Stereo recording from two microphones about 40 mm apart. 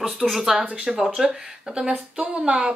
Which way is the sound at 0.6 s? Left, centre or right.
Right.